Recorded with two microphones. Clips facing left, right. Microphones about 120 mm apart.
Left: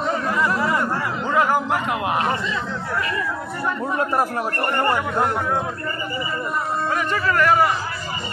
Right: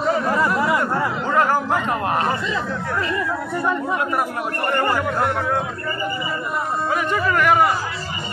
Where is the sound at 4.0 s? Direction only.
30° left (ahead or behind).